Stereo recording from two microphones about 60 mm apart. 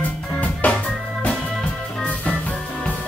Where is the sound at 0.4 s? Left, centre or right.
Left.